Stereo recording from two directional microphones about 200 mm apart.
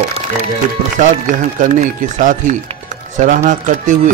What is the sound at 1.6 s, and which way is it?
Speech, 40° right (ahead or behind).